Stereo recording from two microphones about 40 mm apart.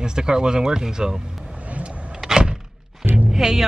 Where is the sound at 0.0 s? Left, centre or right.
Centre.